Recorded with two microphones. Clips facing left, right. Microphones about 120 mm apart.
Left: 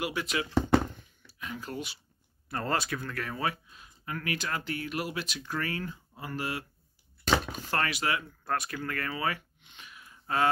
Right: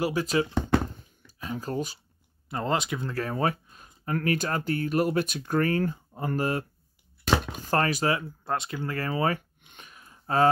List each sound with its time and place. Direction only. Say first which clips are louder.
0.0 s speech: right 7 dB; 35° right (ahead or behind)
0.9 s a sound: right 1 dB; 35° right (ahead or behind)
2.5 s speech: right 3 dB; 20° right (ahead or behind); by 6.6 s 45° right (ahead or behind)
7.2 s chopping: right 2 dB; centre (ahead or behind)
7.7 s speech: right 6 dB; 40° right (ahead or behind)
8.5 s speech: right 2 dB; 25° right (ahead or behind)
9.6 s a sound: right 1 dB; 50° right (ahead or behind)